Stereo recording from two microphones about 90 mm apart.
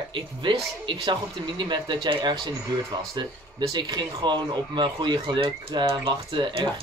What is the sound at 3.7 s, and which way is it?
Speech, 55° right (ahead or behind).